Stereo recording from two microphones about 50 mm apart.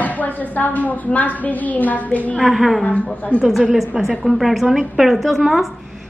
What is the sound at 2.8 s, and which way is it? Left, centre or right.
Speech, left.